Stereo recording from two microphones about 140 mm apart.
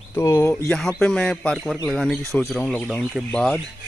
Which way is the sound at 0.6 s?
5° left (ahead or behind).